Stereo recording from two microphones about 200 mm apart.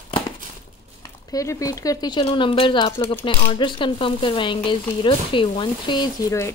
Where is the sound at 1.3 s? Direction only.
15° left (ahead or behind).